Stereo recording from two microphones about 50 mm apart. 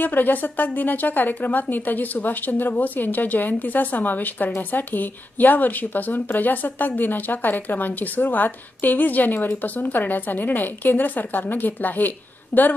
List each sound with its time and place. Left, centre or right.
0.0 s a woman's voice: left